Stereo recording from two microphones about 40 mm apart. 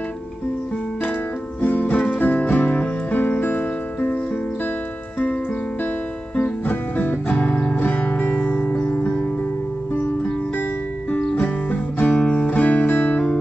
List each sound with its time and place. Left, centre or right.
1.6 s music: left
6.3 s music: left
11.2 s music: left
12.1 s music: left